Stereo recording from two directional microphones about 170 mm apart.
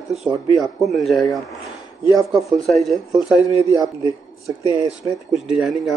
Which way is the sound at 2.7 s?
Centre (ahead or behind).